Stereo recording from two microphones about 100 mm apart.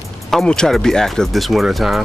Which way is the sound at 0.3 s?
5° left (ahead or behind).